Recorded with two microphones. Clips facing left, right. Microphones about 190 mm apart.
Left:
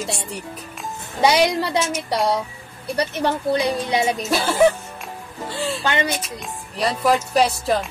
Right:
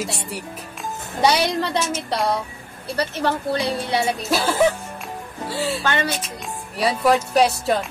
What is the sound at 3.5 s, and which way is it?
Speech, 15° left (ahead or behind).